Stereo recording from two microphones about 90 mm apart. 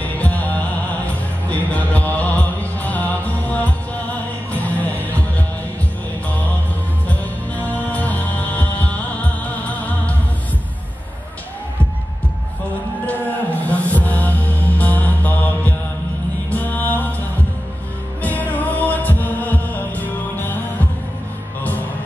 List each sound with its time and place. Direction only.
0.2 s music: 15° left (ahead or behind)
7.1 s music: 15° left (ahead or behind)
13.0 s music: 20° left (ahead or behind)
18.2 s heart sounds: 20° left (ahead or behind)